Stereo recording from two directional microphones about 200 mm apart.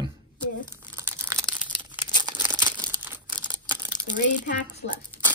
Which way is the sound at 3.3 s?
20° right (ahead or behind).